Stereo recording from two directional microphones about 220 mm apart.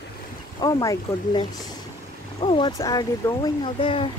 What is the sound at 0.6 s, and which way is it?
Speech, 15° left (ahead or behind).